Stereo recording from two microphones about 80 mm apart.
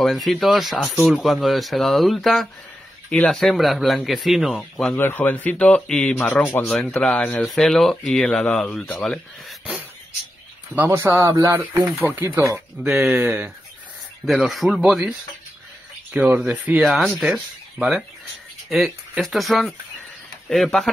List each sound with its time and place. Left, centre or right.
0.0 s speech: centre
4.9 s speech: left
6.4 s speech: left
6.8 s speech: centre
10.7 s speech: right
12.0 s speech: right
13.1 s speech: centre
14.2 s speech: centre
16.1 s speech: centre
16.8 s speech: centre
19.2 s speech: centre